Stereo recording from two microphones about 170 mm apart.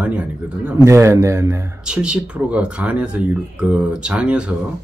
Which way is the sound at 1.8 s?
5° right (ahead or behind).